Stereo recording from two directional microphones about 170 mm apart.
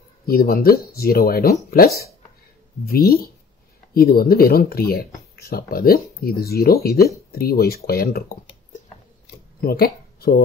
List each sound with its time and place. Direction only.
0.3 s speech: 65° left (ahead or behind)
2.8 s speech: 65° left (ahead or behind)
9.6 s speech: 60° left (ahead or behind)